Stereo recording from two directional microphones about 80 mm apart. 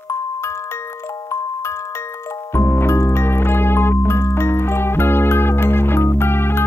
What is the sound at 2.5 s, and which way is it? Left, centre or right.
Music, left.